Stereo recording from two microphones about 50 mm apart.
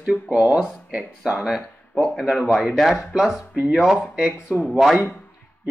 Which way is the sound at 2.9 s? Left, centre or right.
Centre.